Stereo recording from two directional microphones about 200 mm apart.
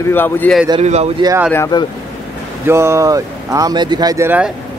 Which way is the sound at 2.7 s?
15° right (ahead or behind).